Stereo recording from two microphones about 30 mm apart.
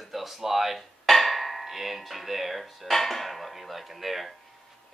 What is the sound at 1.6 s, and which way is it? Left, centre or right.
Speech, centre.